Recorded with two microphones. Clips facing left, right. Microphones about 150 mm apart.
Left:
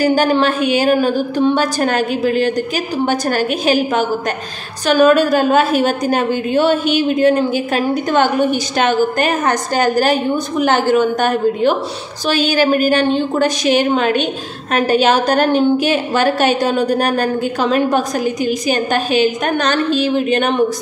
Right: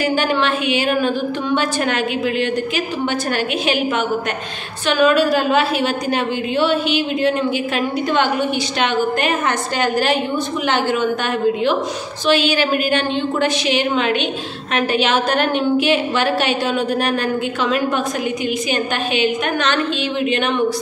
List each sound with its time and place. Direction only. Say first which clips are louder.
0.0 s a woman's voice: left 5 dB; 40° left (ahead or behind)